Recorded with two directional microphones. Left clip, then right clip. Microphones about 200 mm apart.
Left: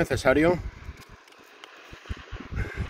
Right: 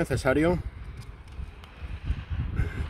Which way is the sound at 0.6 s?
40° left (ahead or behind).